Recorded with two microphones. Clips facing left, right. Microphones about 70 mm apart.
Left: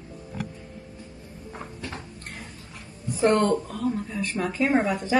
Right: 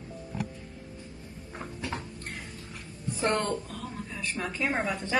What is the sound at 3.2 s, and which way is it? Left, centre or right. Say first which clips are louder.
Speech: left 8 dB; centre.